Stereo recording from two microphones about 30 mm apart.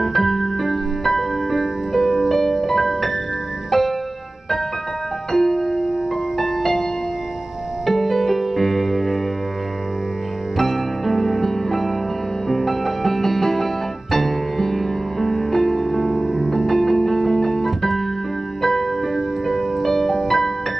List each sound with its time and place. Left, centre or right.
0.0 s music: centre
2.2 s music: centre
3.7 s music: centre
5.3 s music: centre
5.7 s music: centre
6.3 s music: centre
7.8 s music: centre
10.6 s music: centre
19.1 s music: centre